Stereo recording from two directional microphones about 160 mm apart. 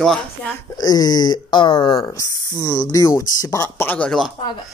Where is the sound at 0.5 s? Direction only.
25° left (ahead or behind); by 4.3 s centre (ahead or behind).